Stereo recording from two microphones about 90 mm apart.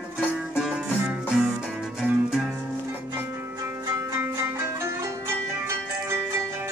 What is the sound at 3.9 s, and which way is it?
Zither, 25° right (ahead or behind).